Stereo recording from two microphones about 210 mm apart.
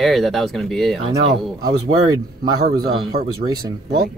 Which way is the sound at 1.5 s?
20° right (ahead or behind).